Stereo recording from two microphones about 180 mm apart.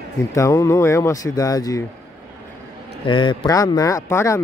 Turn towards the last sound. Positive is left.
turn(degrees=15)  # may be behind; listen again after turning